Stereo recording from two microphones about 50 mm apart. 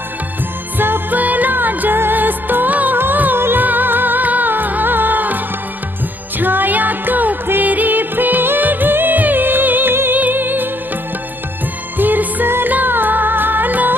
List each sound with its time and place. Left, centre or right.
0.7 s music: right
6.4 s music: right
12.0 s music: right